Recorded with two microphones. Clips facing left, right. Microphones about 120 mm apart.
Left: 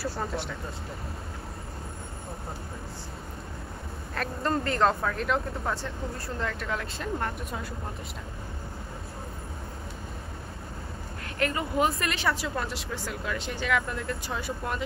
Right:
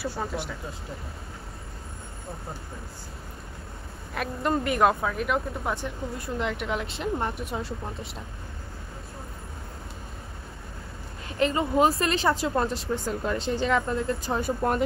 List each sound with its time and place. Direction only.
0.0 s speech: centre (ahead or behind)
4.1 s speech: 10° right (ahead or behind); by 8.1 s 25° right (ahead or behind)
11.2 s speech: 25° right (ahead or behind)
14.4 s speech: 45° right (ahead or behind)